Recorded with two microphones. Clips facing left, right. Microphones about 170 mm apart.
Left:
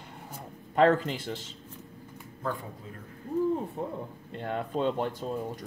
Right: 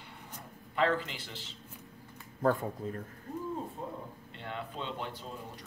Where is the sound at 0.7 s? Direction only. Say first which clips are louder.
Left 7 dB; 45° left (ahead or behind).